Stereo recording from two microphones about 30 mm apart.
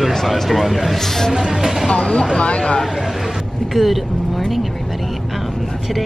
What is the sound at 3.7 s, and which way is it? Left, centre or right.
Vehicle, centre.